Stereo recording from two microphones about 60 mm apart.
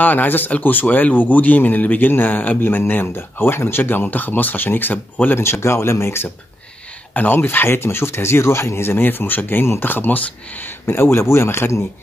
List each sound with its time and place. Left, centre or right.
0.0 s speech: left
5.4 s speech: left
7.3 s speech: left
10.9 s speech: left